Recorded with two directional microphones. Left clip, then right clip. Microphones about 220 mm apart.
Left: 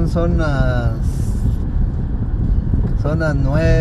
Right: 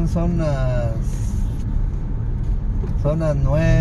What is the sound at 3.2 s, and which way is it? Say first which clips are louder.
Speech: left 5 dB; 20° left (ahead or behind).